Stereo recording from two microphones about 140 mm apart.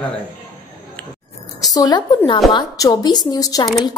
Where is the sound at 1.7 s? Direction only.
25° left (ahead or behind).